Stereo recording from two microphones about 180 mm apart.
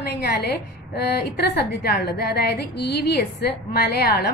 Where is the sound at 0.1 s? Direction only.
65° left (ahead or behind).